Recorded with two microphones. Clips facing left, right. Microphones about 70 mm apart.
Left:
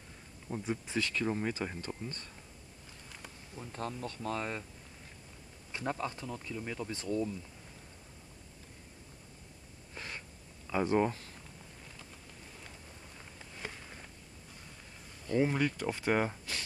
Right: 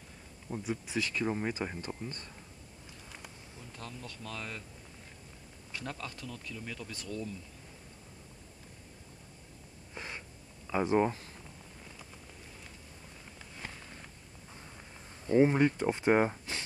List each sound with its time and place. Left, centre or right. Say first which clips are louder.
0.7 s speech: even; centre
3.7 s speech: left 7 dB; left
5.7 s speech: left 5 dB; left
9.9 s a sound: right 1 dB; centre
10.7 s speech: right 1 dB; centre
15.2 s speech: right 5 dB; right